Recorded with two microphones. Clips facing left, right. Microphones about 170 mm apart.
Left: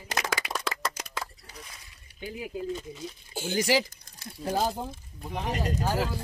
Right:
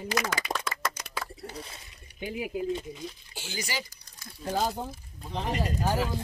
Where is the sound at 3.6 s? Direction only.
90° left.